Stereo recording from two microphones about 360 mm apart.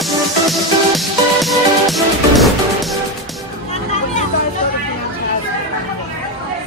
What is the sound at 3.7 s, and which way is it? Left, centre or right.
Music, centre.